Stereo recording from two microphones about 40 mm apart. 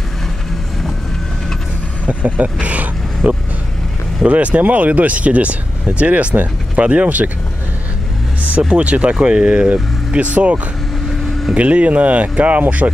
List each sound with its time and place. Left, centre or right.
2.0 s speech: right
8.7 s speech: right
9.1 s speech: right
9.7 s speech: right